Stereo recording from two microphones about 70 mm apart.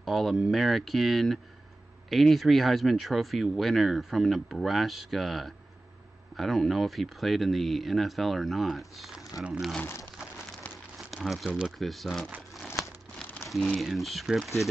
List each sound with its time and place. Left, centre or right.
0.0 s speech: centre
11.2 s speech: centre
12.5 s crumpling: centre
13.7 s speech: centre